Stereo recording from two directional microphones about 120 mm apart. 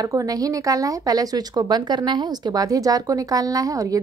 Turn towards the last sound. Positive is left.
turn(degrees=-30)  # may be behind; listen again after turning